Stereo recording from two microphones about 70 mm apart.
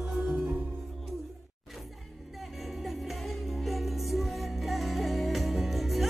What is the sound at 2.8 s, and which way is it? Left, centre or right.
Music, centre.